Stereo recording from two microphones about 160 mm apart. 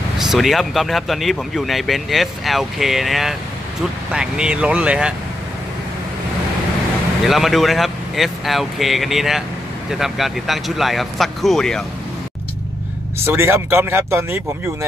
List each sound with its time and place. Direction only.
0.2 s speech: centre (ahead or behind)
7.2 s speech: centre (ahead or behind)
13.2 s speech: 15° right (ahead or behind)